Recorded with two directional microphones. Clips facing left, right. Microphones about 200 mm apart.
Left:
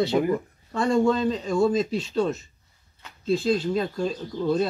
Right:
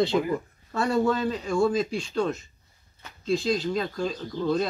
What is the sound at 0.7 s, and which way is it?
Speech, 5° right (ahead or behind).